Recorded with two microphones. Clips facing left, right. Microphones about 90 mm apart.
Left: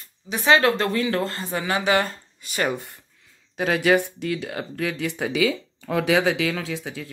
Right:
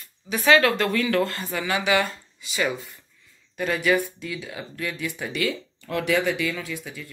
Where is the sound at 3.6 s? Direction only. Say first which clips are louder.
Left 3 dB; 75° left (ahead or behind).